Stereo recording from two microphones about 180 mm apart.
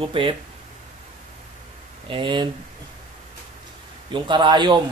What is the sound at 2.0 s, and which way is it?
Speech, 30° right (ahead or behind).